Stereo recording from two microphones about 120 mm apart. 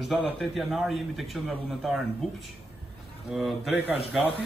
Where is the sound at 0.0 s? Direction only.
Centre (ahead or behind).